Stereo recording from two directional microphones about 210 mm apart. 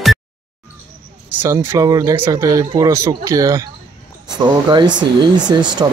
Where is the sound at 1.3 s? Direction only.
10° right (ahead or behind).